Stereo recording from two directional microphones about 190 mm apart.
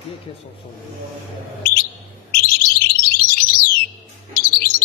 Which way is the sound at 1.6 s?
50° left (ahead or behind).